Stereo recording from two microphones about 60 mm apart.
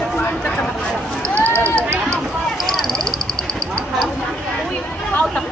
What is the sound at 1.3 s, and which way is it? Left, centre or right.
Run, left.